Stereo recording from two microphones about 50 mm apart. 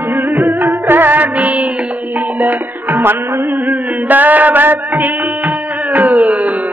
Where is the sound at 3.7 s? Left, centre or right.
Right.